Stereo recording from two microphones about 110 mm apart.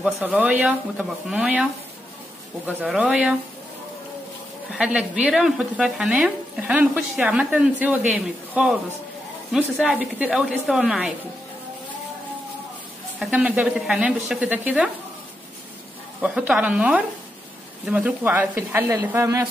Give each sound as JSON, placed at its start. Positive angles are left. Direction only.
{"t": 0.0, "sound": "speech", "side_deg": -15}
{"t": 2.8, "sound": "speech", "side_deg": -10}
{"t": 4.7, "sound": "speech", "side_deg": -10}
{"t": 9.9, "sound": "speech", "side_deg": -10}
{"t": 13.3, "sound": "speech", "side_deg": -10}
{"t": 16.2, "sound": "speech", "side_deg": -10}